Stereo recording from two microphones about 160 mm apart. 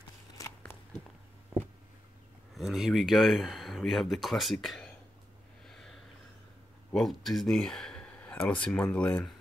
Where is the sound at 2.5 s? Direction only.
Centre (ahead or behind).